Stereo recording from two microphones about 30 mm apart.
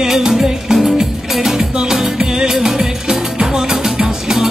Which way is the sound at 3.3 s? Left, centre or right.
Right.